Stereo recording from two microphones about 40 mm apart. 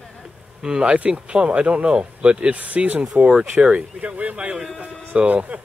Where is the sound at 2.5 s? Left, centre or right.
Right.